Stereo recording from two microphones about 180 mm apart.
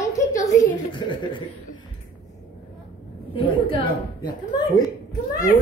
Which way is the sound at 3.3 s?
25° left (ahead or behind).